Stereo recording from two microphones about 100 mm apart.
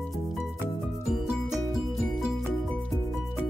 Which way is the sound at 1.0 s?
Centre (ahead or behind).